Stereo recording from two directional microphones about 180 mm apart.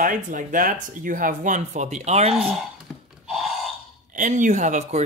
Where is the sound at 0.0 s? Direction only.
45° right (ahead or behind).